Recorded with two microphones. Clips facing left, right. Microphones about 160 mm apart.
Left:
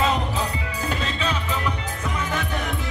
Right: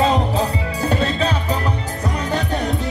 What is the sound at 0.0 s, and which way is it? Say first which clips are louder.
Music: right 6 dB; 35° right (ahead or behind).